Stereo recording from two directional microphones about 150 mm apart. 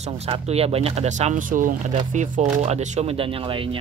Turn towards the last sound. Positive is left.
turn(degrees=-35)  # may be behind; listen again after turning